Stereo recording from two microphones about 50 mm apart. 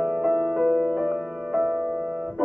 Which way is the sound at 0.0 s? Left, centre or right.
Centre.